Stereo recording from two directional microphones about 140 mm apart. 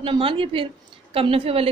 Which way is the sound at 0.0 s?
40° right (ahead or behind).